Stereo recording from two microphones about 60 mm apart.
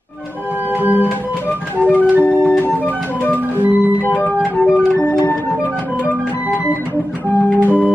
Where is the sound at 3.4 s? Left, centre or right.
Right.